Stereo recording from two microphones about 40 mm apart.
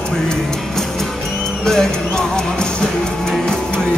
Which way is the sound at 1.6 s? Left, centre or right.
Centre.